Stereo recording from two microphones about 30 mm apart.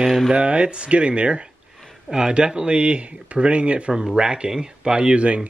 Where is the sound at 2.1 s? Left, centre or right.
Right.